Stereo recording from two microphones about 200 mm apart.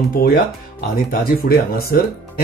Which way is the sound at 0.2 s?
50° left (ahead or behind).